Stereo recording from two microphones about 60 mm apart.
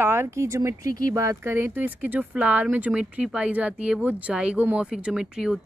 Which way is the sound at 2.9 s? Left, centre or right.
Centre.